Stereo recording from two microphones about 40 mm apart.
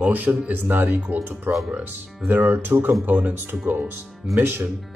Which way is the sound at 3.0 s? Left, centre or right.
Right.